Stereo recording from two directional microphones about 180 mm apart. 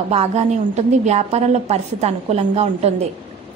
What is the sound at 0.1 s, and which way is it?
A woman's voice, 35° right (ahead or behind).